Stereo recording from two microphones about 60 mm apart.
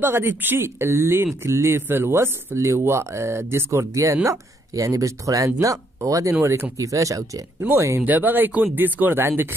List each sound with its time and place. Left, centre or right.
0.0 s speech: right
1.8 s speech: right
7.7 s speech: right
8.0 s speech: right